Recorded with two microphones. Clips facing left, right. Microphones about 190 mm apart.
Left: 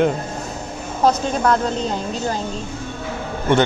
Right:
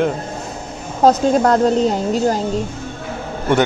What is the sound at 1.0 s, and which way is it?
Speech, 40° right (ahead or behind).